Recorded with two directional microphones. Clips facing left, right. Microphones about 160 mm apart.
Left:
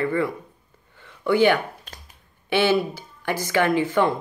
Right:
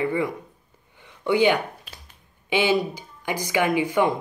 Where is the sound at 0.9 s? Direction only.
15° right (ahead or behind).